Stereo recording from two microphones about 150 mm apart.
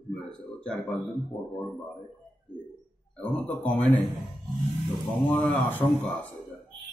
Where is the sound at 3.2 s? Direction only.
10° left (ahead or behind).